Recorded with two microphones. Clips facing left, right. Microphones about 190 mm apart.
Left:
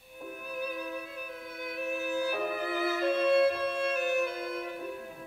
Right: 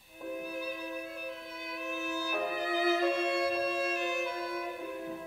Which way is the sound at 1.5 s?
55° left (ahead or behind).